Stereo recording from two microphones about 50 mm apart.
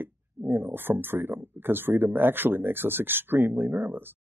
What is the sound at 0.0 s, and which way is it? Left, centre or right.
Speech, right.